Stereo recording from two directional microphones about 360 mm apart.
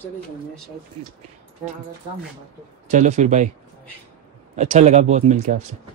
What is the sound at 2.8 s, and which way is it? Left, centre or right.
Speech, centre.